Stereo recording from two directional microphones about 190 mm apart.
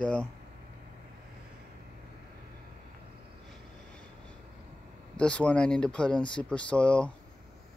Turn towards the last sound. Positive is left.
turn(degrees=5)  # may be behind; listen again after turning